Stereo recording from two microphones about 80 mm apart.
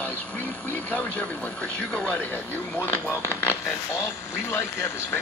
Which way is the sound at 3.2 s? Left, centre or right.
Left.